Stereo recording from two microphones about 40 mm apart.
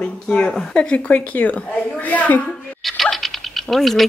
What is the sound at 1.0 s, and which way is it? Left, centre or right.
A woman's voice, left.